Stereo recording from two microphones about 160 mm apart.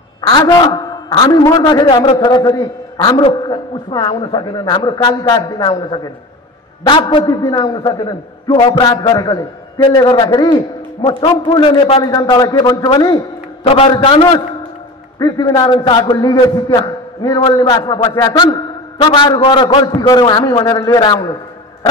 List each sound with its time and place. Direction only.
0.2 s a man's voice: 25° left (ahead or behind)
3.2 s a man's voice: 35° left (ahead or behind)
13.7 s a man's voice: 40° left (ahead or behind)